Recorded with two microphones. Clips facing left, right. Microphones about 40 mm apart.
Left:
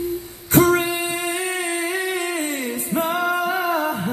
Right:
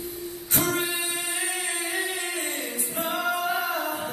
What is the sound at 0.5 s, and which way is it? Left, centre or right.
Humming, left.